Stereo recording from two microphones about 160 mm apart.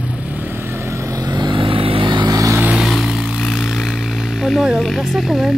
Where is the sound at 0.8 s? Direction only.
25° right (ahead or behind).